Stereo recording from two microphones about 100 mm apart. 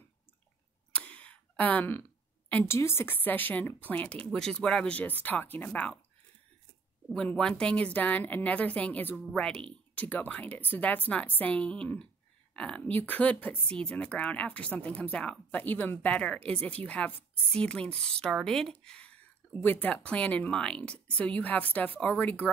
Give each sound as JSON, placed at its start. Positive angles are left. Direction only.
{"t": 0.9, "sound": "speech", "side_deg": 10}
{"t": 7.2, "sound": "speech", "side_deg": 5}
{"t": 9.2, "sound": "speech", "side_deg": 5}